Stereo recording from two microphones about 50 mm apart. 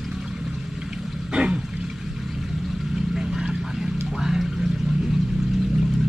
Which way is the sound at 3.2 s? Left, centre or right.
Centre.